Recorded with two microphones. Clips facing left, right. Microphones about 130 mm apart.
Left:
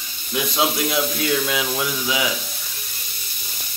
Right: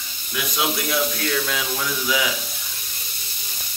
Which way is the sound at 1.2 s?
10° left (ahead or behind).